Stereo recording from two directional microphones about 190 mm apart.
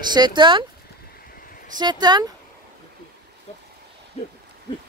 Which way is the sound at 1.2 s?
50° left (ahead or behind).